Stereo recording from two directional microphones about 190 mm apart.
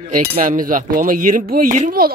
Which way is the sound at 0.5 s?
40° right (ahead or behind).